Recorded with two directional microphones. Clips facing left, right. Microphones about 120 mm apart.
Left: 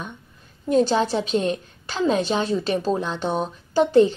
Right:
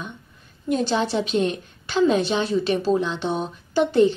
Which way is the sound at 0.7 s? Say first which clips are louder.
Left 3 dB; 35° left (ahead or behind).